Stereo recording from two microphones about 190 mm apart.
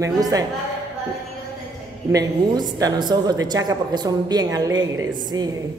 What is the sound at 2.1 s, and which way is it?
A woman's voice, 20° right (ahead or behind).